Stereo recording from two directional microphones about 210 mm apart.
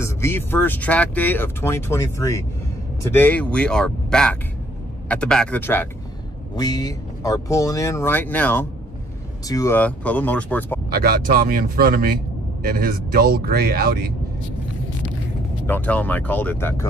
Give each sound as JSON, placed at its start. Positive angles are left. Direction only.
{"t": 0.0, "sound": "speech", "side_deg": 10}
{"t": 10.9, "sound": "speech", "side_deg": -45}
{"t": 15.6, "sound": "speech", "side_deg": 10}